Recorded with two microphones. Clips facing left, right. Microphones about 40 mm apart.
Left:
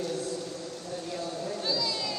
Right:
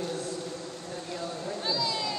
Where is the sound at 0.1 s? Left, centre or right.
Right.